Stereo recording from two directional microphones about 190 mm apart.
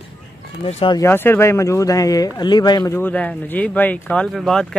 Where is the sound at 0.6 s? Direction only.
25° left (ahead or behind).